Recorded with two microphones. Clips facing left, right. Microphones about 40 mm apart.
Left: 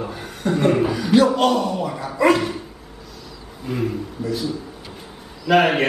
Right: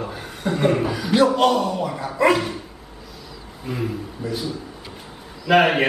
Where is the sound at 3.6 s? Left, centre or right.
Centre.